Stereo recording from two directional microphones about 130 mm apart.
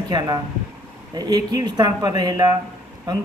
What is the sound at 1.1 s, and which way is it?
Speech, 30° right (ahead or behind).